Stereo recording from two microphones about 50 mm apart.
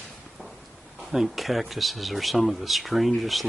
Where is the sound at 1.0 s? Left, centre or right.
Centre.